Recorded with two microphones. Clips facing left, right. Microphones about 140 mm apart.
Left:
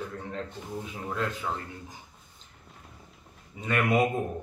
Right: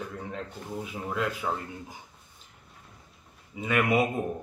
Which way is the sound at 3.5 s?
5° right (ahead or behind).